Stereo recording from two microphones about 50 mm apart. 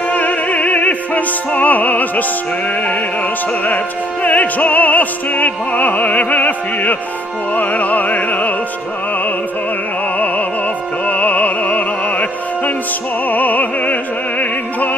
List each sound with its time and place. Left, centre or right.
0.1 s opera: left
3.6 s music: left
11.1 s music: left